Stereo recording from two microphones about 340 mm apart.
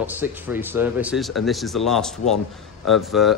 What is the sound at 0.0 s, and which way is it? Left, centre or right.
Speech, centre.